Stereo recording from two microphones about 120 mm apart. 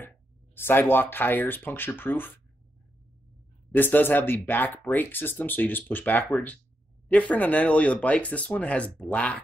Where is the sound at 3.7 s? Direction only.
15° left (ahead or behind).